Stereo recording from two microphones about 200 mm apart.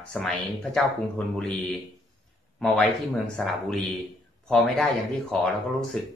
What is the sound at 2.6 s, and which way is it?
Speech, centre (ahead or behind).